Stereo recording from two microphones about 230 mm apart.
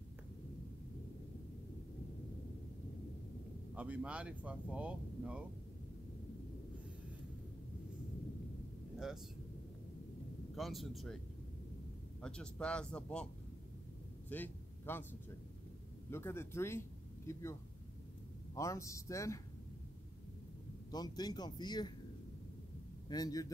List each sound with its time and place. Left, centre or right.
3.7 s speech: centre
8.9 s a sound: centre
10.5 s speech: centre
12.2 s speech: centre
14.3 s a sound: centre
16.1 s speech: centre
20.9 s speech: centre
23.0 s speech: centre